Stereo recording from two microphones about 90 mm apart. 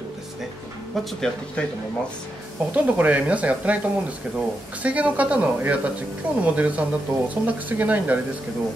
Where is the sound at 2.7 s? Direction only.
15° right (ahead or behind).